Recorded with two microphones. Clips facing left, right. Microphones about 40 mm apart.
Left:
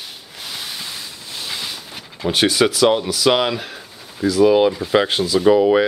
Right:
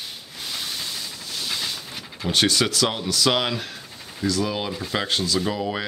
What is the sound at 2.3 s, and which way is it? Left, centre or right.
Speech, centre.